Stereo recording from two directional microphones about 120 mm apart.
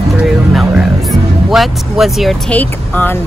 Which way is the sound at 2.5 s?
15° left (ahead or behind).